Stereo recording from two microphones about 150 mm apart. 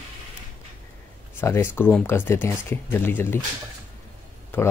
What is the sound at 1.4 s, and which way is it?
Speech, 15° left (ahead or behind).